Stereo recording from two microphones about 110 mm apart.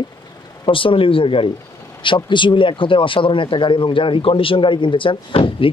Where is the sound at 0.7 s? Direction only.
55° left (ahead or behind).